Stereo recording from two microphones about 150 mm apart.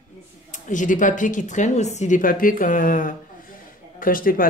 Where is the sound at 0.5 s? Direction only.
60° left (ahead or behind).